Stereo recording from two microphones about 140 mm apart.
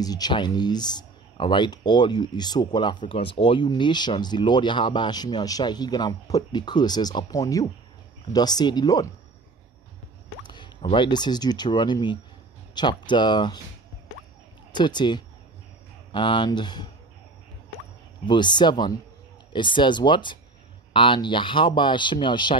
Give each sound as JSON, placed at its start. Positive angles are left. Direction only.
{"t": 0.0, "sound": "speech", "side_deg": 30}
{"t": 10.4, "sound": "speech", "side_deg": 35}
{"t": 14.7, "sound": "speech", "side_deg": 30}
{"t": 18.2, "sound": "speech", "side_deg": 35}